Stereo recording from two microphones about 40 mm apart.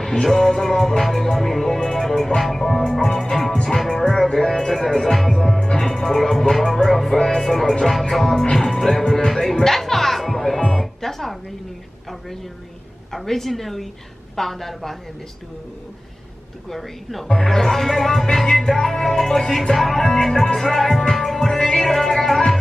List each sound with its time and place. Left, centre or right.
0.0 s music: centre
2.4 s a woman's voice: centre
2.9 s music: centre
6.5 s a woman's voice: centre
7.2 s music: centre
9.0 s music: centre
9.3 s music: centre
13.1 s a woman's voice: centre
16.6 s a woman's voice: centre
17.4 s music: centre
20.5 s a woman's voice: centre
21.1 s music: centre